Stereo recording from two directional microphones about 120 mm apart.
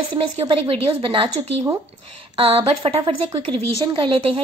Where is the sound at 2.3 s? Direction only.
50° right (ahead or behind).